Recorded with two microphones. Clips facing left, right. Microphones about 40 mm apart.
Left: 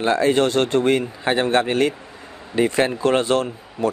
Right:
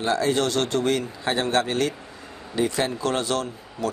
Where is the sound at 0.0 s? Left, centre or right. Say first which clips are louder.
Left 5 dB; left.